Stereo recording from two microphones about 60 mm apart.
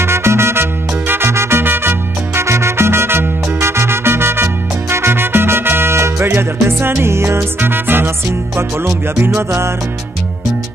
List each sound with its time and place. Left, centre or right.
0.0 s salsa music: right
7.6 s music: right